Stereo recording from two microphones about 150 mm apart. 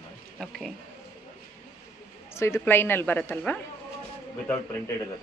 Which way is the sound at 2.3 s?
20° left (ahead or behind).